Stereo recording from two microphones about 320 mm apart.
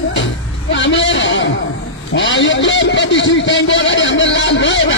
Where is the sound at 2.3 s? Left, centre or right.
Left.